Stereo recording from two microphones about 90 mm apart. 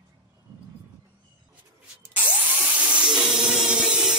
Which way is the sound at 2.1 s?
15° right (ahead or behind).